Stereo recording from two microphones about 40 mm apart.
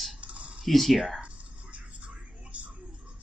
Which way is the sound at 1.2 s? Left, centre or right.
Right.